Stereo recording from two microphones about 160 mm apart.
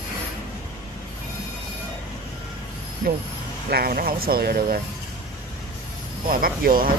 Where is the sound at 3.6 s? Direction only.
75° right (ahead or behind).